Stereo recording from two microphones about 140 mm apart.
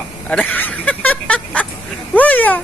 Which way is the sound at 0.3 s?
10° left (ahead or behind).